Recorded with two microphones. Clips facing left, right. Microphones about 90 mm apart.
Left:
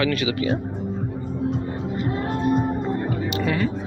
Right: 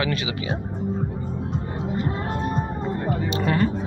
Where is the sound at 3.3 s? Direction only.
40° right (ahead or behind).